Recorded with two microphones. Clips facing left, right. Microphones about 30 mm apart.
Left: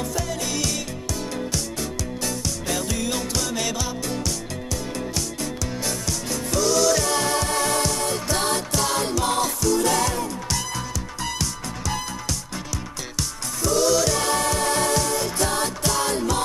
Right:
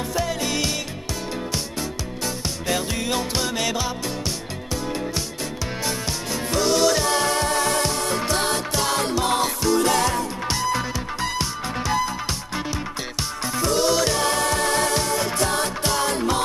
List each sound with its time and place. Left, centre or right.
0.1 s music: right
6.5 s music: right
8.7 s music: right
13.6 s music: right